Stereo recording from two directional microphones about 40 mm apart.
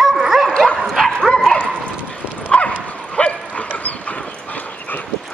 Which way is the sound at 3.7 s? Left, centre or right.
Left.